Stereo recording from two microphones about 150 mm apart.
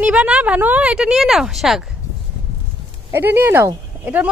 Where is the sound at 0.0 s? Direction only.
10° right (ahead or behind).